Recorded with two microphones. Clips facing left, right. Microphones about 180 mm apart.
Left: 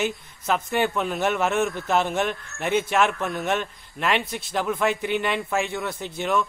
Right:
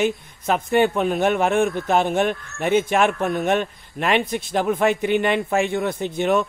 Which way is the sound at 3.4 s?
55° right (ahead or behind).